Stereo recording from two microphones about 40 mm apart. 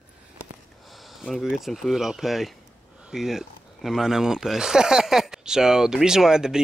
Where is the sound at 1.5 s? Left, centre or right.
Centre.